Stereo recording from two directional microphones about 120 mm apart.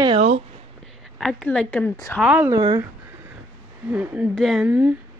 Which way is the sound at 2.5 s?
35° right (ahead or behind).